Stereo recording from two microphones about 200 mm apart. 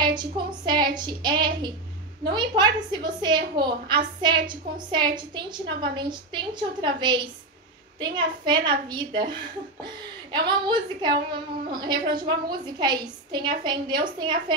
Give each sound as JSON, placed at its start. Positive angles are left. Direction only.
{"t": 0.0, "sound": "child singing", "side_deg": -20}
{"t": 2.2, "sound": "a woman's voice", "side_deg": -20}